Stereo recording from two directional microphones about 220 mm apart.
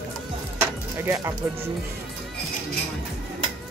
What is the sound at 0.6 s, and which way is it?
Music, 10° right (ahead or behind).